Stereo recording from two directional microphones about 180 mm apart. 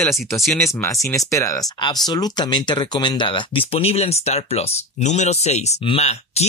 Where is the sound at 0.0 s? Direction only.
5° left (ahead or behind).